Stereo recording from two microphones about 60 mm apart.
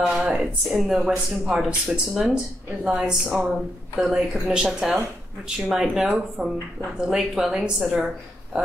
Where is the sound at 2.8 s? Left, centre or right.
Centre.